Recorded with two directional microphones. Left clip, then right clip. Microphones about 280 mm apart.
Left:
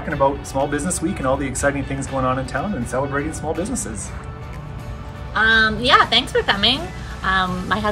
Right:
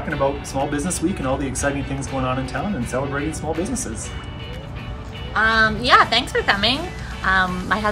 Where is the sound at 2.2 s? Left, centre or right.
Centre.